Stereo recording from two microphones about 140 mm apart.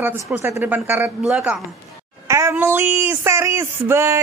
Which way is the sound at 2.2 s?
20° right (ahead or behind).